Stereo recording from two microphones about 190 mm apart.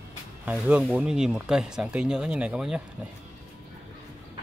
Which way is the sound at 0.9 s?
5° right (ahead or behind).